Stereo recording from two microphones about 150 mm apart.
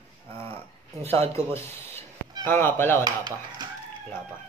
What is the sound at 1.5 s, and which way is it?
Speech, 15° left (ahead or behind).